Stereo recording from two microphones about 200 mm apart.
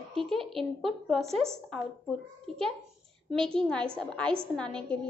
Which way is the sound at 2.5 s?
Centre (ahead or behind).